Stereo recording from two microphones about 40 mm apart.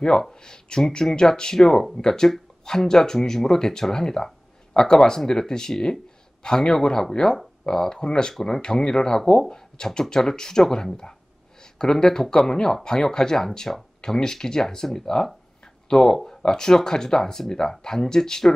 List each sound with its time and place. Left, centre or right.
0.2 s speech: centre